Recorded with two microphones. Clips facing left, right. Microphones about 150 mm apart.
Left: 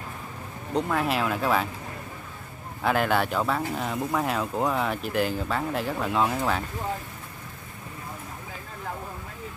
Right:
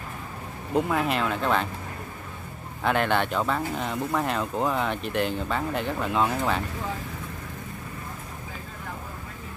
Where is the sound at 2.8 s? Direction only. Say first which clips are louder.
Even; 5° left (ahead or behind).